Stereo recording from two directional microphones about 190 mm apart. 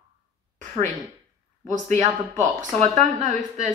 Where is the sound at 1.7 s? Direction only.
40° right (ahead or behind).